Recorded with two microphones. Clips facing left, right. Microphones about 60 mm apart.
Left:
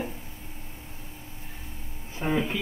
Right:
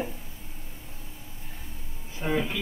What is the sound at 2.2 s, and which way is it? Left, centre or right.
Speech, left.